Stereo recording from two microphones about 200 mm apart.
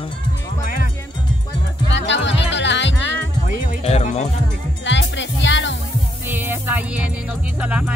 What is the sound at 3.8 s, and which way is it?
Speech, 35° left (ahead or behind).